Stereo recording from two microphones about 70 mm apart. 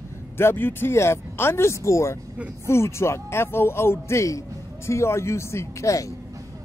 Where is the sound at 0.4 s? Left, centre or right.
Left.